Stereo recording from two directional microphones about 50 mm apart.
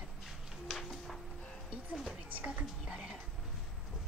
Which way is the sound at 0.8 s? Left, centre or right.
Centre.